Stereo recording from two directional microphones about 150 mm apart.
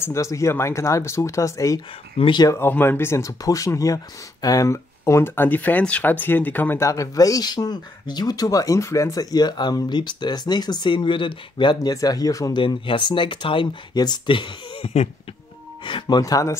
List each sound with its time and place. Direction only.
0.0 s speech: 20° left (ahead or behind)
2.1 s speech: 30° left (ahead or behind)
2.5 s speech: 15° left (ahead or behind)
12.6 s speech: 35° left (ahead or behind)